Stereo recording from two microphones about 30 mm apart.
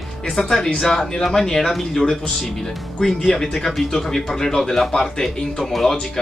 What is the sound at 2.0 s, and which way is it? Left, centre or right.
Speech, left.